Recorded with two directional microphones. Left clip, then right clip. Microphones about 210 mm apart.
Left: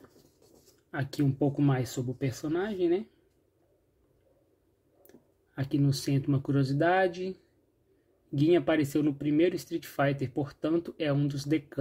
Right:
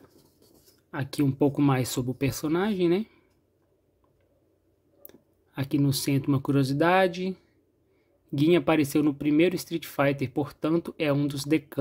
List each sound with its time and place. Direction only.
0.8 s speech: 15° right (ahead or behind)
1.4 s speech: 25° right (ahead or behind)
5.0 s speech: 20° right (ahead or behind)
8.4 s speech: 20° right (ahead or behind)